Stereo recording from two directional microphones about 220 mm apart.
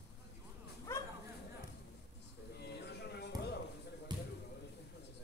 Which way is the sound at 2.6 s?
50° left (ahead or behind).